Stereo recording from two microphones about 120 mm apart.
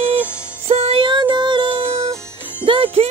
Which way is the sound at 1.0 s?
40° right (ahead or behind).